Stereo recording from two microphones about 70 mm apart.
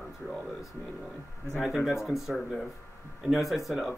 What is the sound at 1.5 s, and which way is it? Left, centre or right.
Speech, centre.